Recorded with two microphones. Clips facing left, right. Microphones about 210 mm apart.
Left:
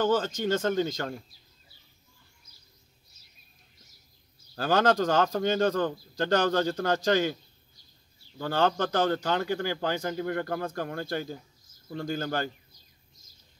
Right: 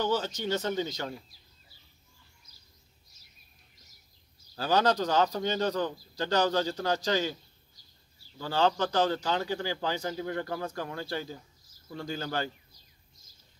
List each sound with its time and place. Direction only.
0.0 s a man's voice: 50° left (ahead or behind)
4.6 s a man's voice: 50° left (ahead or behind)
8.4 s a man's voice: 55° left (ahead or behind)